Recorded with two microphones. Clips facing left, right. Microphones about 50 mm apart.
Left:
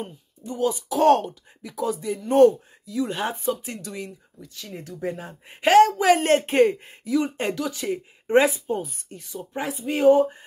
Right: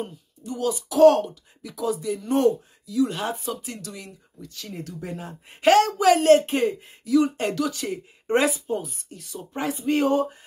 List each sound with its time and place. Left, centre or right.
0.5 s speech: left
4.4 s speech: centre
5.9 s speech: left
7.6 s speech: centre
8.6 s speech: left
9.4 s speech: centre